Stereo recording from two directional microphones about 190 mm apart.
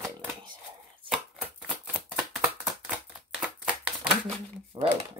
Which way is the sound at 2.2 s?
Centre (ahead or behind).